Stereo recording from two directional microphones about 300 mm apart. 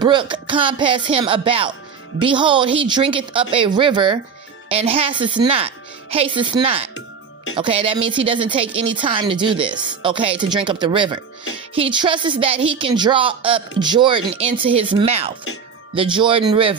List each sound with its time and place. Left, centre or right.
0.0 s speech: centre